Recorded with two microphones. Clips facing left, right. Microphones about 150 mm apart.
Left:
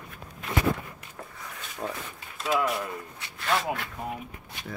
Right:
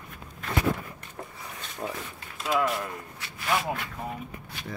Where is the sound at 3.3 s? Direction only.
5° right (ahead or behind).